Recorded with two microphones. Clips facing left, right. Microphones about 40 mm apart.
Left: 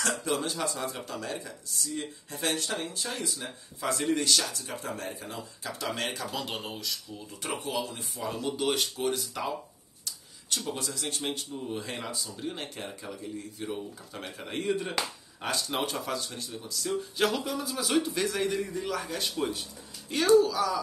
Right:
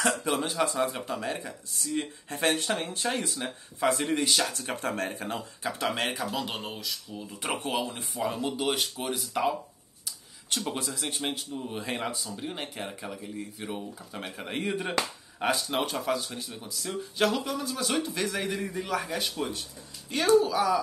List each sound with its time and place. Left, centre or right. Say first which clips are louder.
0.0 s speech: right 2 dB; right
2.0 s speech: right 9 dB; right
4.1 s speech: right 1 dB; right
4.6 s speech: right 5 dB; right
5.6 s speech: right 3 dB; right
6.3 s speech: right 2 dB; centre
7.5 s speech: right 2 dB; right
8.2 s speech: right 4 dB; right
8.5 s speech: even; centre
10.5 s speech: right 2 dB; right
10.9 s speech: right 1 dB; centre
12.4 s speech: right 1 dB; centre
15.7 s speech: right 3 dB; centre
20.2 s speech: even; centre